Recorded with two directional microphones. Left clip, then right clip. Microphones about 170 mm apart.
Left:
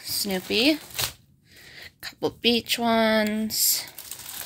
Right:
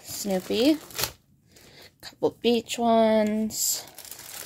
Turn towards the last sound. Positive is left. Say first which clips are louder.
# left 4 dB
turn(degrees=-10)  # may be behind; listen again after turning